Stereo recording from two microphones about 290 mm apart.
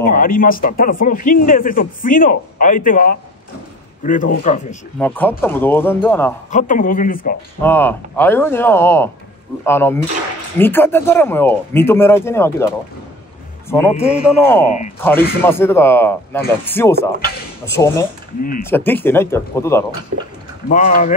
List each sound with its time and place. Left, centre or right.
0.0 s speech: left
4.9 s speech: centre
6.5 s speech: left
7.6 s a man's voice: centre
20.6 s speech: left